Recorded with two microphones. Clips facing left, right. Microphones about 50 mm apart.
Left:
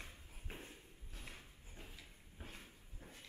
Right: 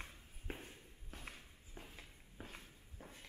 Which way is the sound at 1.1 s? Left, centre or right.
Right.